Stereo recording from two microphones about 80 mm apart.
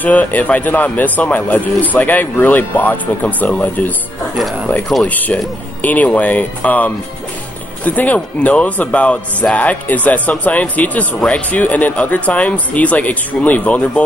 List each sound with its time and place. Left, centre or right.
0.0 s a man's voice: centre
5.0 s a man's voice: centre